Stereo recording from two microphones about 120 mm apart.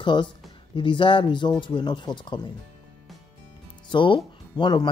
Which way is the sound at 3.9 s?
45° left (ahead or behind).